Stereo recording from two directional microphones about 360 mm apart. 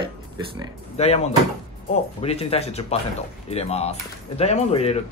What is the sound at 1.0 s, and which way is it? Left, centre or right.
Speech, centre.